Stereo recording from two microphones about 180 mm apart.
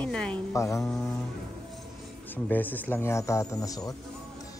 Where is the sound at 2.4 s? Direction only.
10° left (ahead or behind).